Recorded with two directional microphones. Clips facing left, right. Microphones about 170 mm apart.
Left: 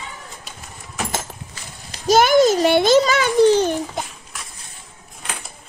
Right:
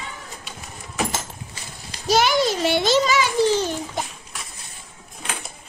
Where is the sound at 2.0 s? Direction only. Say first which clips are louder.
Left 6 dB; 50° left (ahead or behind).